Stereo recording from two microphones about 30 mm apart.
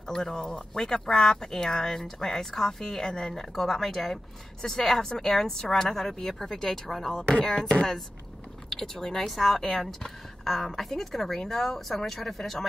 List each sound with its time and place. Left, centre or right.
0.0 s speech: left; by 4.2 s centre
4.6 s speech: centre
8.6 s speech: centre